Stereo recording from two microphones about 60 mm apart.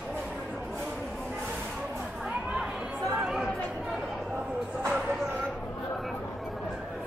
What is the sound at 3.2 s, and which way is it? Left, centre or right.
Chatter, centre.